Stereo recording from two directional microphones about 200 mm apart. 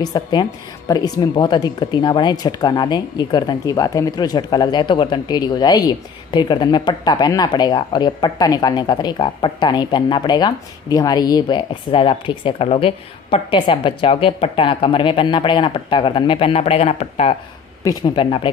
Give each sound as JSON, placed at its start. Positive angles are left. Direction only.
{"t": 0.0, "sound": "a woman's voice", "side_deg": 20}
{"t": 17.8, "sound": "a woman's voice", "side_deg": 20}